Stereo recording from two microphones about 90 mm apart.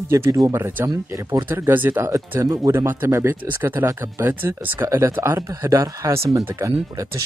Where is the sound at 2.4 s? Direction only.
40° right (ahead or behind).